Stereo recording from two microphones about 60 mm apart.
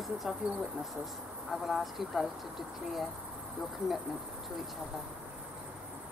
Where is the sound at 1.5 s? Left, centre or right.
Centre.